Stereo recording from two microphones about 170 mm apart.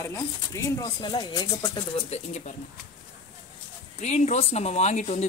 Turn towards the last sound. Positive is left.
turn(degrees=45)  # may be behind; listen again after turning